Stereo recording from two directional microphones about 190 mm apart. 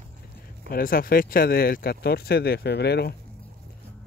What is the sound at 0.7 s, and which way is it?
Speech, 50° left (ahead or behind).